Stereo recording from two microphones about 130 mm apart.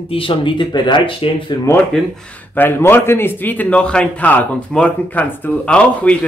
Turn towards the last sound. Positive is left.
turn(degrees=10)  # may be behind; listen again after turning